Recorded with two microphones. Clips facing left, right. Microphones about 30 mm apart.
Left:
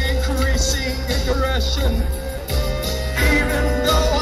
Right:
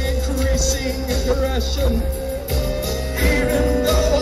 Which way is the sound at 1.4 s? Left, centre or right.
Left.